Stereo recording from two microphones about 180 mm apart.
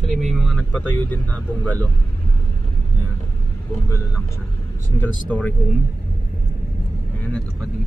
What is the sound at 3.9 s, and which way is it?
Speech, 15° left (ahead or behind).